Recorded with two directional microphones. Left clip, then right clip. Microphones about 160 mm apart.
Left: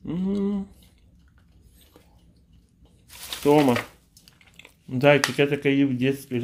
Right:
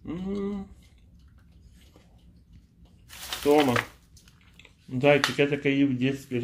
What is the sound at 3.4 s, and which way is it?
Speech, 35° left (ahead or behind).